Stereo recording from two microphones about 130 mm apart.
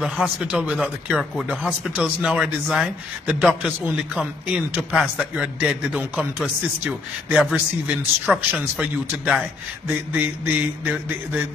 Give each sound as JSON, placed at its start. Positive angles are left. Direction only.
{"t": 0.0, "sound": "speech", "side_deg": -5}